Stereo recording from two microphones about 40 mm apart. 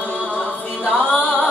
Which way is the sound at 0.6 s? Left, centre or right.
Left.